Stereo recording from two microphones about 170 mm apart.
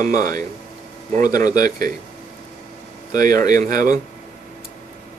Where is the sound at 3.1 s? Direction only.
55° right (ahead or behind).